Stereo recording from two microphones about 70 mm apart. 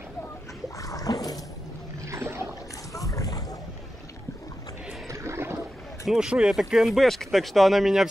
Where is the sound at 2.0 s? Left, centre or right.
Right.